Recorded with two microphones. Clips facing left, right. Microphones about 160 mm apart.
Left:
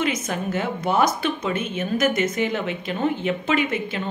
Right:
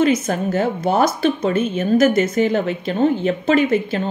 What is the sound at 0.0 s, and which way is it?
A woman's voice, 35° right (ahead or behind).